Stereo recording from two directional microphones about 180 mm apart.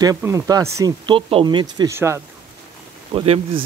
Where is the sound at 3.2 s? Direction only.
30° right (ahead or behind).